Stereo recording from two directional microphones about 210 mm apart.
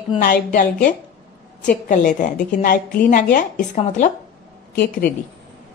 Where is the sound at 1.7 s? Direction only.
35° left (ahead or behind).